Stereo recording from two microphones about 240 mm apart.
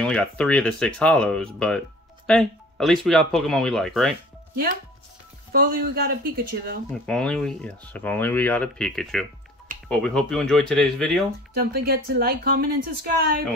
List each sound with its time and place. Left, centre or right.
0.0 s speech: centre
5.5 s speech: right
7.1 s speech: centre
11.5 s speech: right